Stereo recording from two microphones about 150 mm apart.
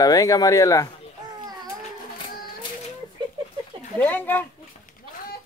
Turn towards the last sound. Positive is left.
turn(degrees=10)  # may be behind; listen again after turning